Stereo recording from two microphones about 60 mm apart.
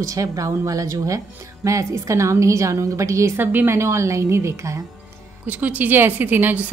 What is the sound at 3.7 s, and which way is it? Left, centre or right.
Speech, right.